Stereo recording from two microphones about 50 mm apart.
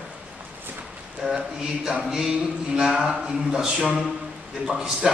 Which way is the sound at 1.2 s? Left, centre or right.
Centre.